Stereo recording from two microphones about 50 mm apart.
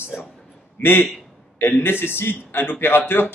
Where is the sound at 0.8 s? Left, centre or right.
Left.